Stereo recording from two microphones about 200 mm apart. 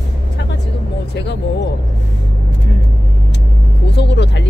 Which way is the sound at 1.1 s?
60° left (ahead or behind).